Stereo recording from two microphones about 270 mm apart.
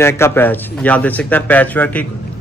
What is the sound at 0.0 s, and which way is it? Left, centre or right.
Speech, centre.